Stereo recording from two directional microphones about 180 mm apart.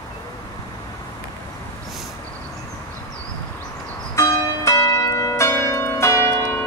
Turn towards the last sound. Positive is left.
turn(degrees=15)  # may be behind; listen again after turning